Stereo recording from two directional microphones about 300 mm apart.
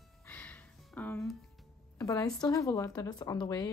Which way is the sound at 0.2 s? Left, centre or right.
Centre.